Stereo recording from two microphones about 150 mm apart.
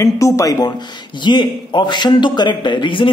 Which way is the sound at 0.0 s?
20° left (ahead or behind).